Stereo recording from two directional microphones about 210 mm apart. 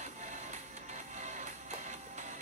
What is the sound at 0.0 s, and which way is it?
Music, 35° right (ahead or behind).